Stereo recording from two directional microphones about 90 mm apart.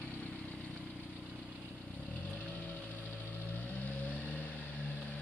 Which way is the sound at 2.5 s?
15° left (ahead or behind).